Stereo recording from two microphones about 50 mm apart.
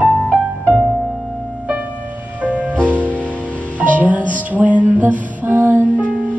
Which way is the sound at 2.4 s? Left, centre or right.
Right.